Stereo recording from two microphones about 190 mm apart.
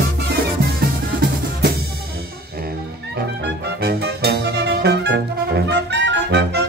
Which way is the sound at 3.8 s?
55° right (ahead or behind).